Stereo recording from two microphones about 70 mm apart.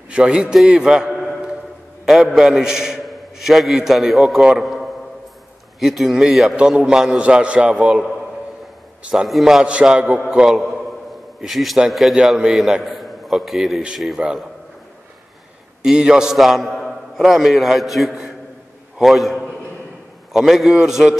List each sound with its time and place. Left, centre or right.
0.1 s a man's voice: centre
9.1 s a man's voice: centre
15.8 s a man's voice: centre